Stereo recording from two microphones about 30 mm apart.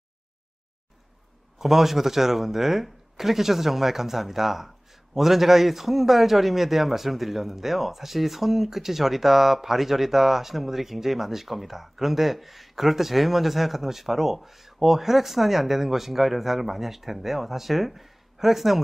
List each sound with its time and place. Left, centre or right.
1.6 s speech: centre